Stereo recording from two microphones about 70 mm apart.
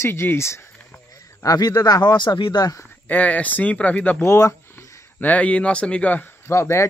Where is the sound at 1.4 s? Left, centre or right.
Left.